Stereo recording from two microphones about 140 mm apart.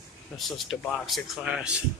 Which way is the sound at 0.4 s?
Centre (ahead or behind).